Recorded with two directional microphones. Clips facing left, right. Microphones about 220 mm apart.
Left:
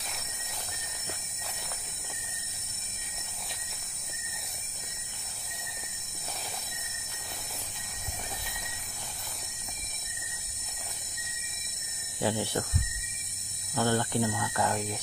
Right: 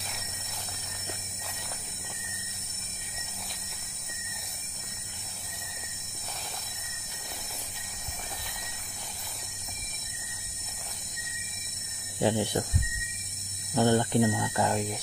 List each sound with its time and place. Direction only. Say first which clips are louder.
12.2 s speech: right 3 dB; 20° right (ahead or behind)
13.7 s speech: right 4 dB; 20° right (ahead or behind)